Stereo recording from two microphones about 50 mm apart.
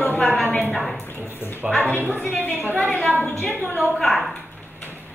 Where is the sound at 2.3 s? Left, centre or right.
Left.